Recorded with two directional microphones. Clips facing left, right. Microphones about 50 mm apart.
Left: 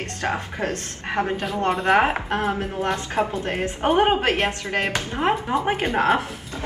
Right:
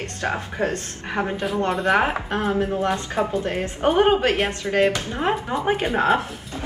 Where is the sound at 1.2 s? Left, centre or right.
Right.